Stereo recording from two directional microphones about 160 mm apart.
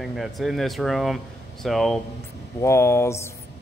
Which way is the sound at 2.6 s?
15° left (ahead or behind).